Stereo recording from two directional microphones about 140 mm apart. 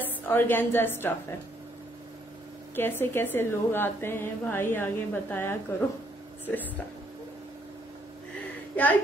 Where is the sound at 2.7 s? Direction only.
15° left (ahead or behind).